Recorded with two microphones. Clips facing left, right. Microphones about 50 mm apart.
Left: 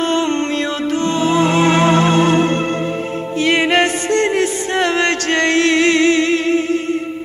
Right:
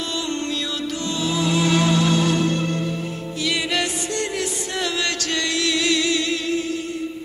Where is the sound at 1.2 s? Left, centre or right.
Left.